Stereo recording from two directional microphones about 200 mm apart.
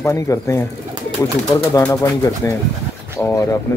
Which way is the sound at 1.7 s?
15° left (ahead or behind).